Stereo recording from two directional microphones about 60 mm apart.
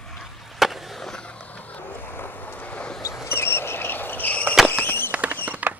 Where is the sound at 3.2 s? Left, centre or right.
Left.